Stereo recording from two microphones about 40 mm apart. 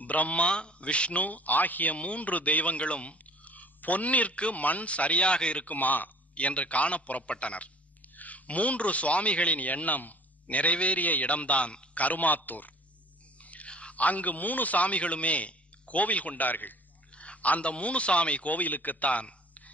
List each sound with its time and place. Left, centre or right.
0.0 s a man's voice: left
1.2 s speech: left
2.0 s a man's voice: left
5.7 s speech: left
6.3 s a man's voice: left
17.1 s a man's voice: left